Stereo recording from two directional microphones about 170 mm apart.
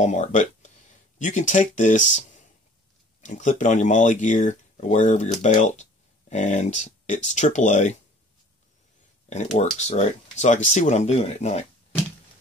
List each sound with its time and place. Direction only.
0.0 s speech: 45° left (ahead or behind)
9.3 s speech: 40° left (ahead or behind)